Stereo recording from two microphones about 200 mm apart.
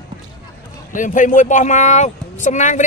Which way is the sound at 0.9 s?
40° left (ahead or behind).